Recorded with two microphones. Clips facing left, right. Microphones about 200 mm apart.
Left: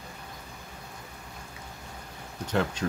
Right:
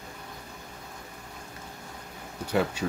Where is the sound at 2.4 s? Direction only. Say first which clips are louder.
Right 1 dB; 10° right (ahead or behind).